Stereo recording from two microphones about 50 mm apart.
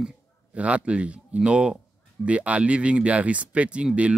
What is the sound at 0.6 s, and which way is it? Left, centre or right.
Speech, right.